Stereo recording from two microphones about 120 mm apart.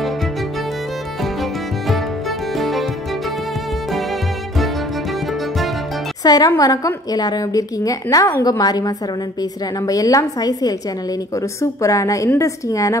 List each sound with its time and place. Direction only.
1.2 s music: centre (ahead or behind)
3.9 s music: centre (ahead or behind)
6.2 s a woman's voice: 30° left (ahead or behind)